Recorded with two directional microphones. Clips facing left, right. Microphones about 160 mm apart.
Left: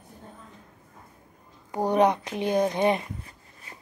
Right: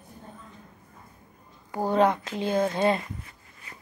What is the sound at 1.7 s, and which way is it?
Speech, 20° left (ahead or behind).